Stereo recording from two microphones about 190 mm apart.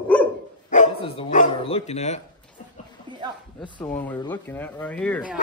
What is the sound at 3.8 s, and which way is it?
Speech, 10° left (ahead or behind).